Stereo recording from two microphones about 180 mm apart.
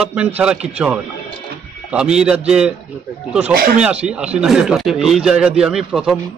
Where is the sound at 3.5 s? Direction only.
55° right (ahead or behind).